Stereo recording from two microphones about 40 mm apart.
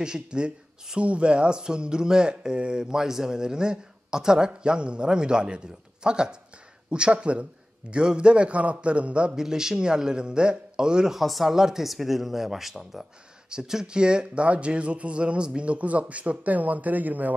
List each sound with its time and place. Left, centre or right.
0.0 s speech: right
9.3 s speech: centre
11.1 s speech: centre; by 17.3 s right